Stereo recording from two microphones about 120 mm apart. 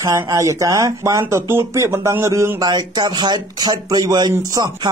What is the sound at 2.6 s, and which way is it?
Speech, 35° right (ahead or behind).